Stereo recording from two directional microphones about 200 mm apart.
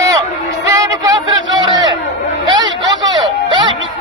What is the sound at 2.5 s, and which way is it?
Vehicle, 65° right (ahead or behind).